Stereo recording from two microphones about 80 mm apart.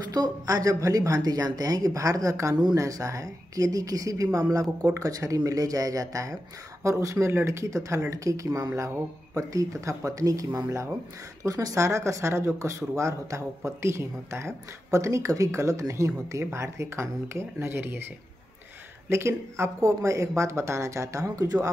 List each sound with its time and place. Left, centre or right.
0.1 s speech: right
19.0 s speech: right